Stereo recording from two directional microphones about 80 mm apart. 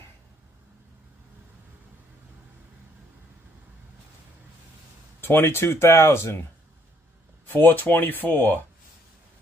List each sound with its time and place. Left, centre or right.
5.2 s speech: left
7.4 s speech: left